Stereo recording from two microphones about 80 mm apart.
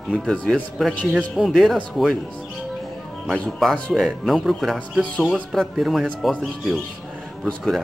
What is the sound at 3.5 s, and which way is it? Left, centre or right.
Speech, centre.